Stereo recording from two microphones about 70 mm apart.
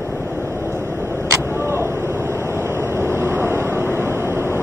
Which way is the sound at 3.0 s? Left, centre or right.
Right.